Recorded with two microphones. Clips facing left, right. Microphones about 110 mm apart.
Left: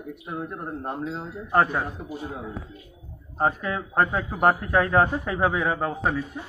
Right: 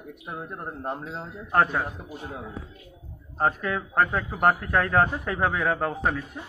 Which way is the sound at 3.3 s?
10° left (ahead or behind).